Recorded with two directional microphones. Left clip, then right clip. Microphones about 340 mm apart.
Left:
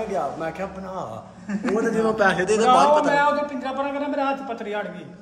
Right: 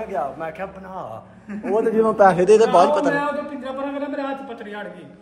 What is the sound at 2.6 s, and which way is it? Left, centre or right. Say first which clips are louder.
Speech: right 1 dB; centre.